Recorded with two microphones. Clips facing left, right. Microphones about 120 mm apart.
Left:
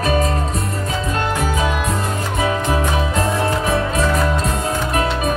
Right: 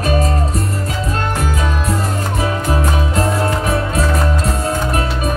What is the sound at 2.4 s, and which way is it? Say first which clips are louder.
Music: left 1 dB; 35° right (ahead or behind).